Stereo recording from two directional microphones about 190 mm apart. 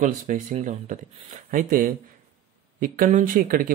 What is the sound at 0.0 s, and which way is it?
Speech, 40° right (ahead or behind).